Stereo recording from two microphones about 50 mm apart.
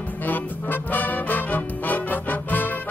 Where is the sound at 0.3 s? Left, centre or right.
Left.